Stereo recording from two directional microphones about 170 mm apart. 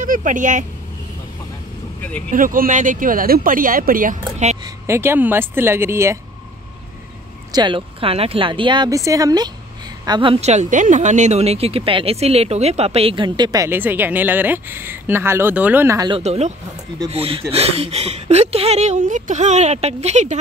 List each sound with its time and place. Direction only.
0.0 s speech: 50° right (ahead or behind)
2.0 s speech: 10° left (ahead or behind)
2.3 s speech: 55° right (ahead or behind)
4.6 s speech: 15° right (ahead or behind)
7.5 s speech: 30° right (ahead or behind)
16.1 s speech: 40° right (ahead or behind)